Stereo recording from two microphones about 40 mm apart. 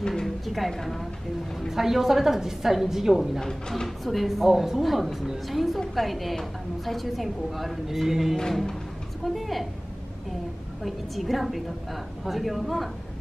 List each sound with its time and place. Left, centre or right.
0.0 s a woman's voice: centre
1.7 s a woman's voice: centre
3.3 s speech: centre
10.8 s speech: centre